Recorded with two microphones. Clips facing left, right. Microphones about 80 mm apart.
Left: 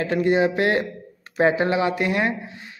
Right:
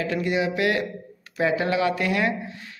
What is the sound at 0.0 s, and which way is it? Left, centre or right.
A man's voice, left.